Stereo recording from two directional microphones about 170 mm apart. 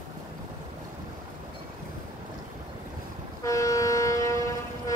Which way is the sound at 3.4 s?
20° left (ahead or behind).